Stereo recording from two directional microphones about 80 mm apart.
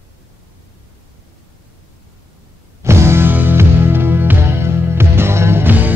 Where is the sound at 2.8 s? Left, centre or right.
Right.